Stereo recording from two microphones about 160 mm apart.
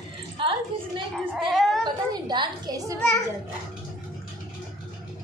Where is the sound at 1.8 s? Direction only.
25° right (ahead or behind).